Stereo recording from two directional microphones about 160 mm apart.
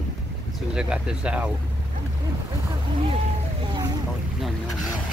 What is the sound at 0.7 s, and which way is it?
Speech, 5° right (ahead or behind).